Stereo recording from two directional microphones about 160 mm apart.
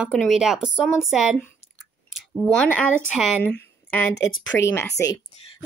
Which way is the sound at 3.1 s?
10° left (ahead or behind).